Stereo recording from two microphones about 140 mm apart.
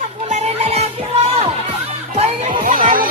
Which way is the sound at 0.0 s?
55° right (ahead or behind).